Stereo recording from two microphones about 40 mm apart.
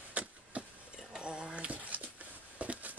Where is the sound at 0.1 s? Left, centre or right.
Right.